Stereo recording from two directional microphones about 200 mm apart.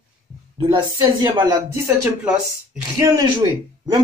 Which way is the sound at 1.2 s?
20° right (ahead or behind).